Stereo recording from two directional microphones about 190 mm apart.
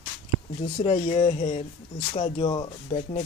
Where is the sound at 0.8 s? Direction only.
30° left (ahead or behind).